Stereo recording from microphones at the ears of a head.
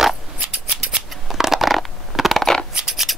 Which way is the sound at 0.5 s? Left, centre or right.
Right.